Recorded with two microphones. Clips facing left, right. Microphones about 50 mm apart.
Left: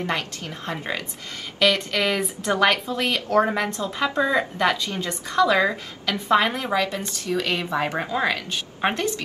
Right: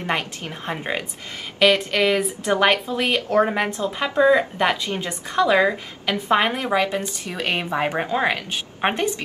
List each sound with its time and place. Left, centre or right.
0.0 s speech: right
1.6 s speech: centre
2.5 s speech: right